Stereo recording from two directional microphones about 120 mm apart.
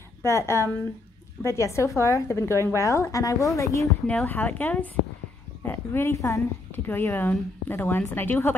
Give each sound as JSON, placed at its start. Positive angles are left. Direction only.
{"t": 0.2, "sound": "a woman's voice", "side_deg": 25}
{"t": 4.1, "sound": "a woman's voice", "side_deg": 10}